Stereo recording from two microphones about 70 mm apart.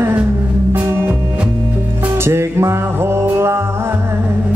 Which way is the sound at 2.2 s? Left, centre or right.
Right.